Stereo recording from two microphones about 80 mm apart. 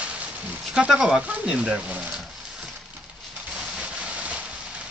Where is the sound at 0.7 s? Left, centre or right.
Centre.